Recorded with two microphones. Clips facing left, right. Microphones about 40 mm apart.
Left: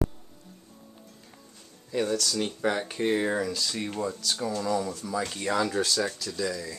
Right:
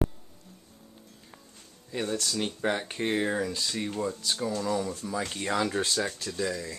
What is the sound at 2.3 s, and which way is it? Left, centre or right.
Speech, centre.